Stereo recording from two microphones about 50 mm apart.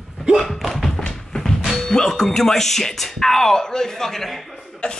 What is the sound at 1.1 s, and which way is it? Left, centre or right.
Speech, centre.